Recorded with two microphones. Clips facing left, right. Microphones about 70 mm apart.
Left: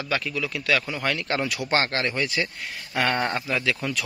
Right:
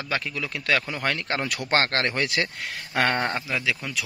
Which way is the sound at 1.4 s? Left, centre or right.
Right.